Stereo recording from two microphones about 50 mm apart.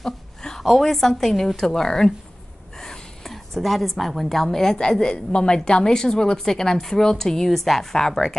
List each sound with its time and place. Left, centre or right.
0.0 s a sound: centre
0.7 s a woman's voice: centre
2.8 s gasp: centre
3.5 s a woman's voice: centre